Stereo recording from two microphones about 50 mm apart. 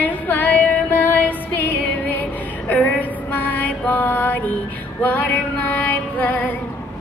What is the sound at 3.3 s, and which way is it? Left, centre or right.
Mantra, left.